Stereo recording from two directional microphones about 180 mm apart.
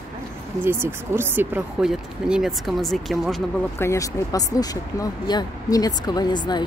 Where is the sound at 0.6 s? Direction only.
10° right (ahead or behind).